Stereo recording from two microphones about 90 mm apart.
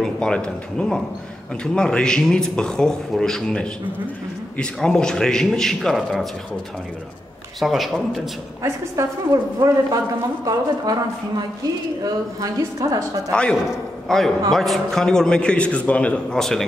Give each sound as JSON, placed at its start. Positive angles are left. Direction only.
{"t": 0.0, "sound": "a man's voice", "side_deg": 10}
{"t": 7.6, "sound": "speech", "side_deg": 0}
{"t": 8.6, "sound": "a woman's voice", "side_deg": -35}
{"t": 13.3, "sound": "a man's voice", "side_deg": 10}